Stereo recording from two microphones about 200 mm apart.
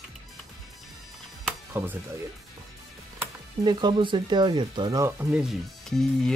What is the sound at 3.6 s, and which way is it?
Speech, 20° right (ahead or behind).